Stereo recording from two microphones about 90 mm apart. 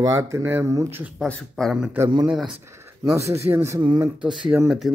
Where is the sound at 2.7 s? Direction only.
30° right (ahead or behind).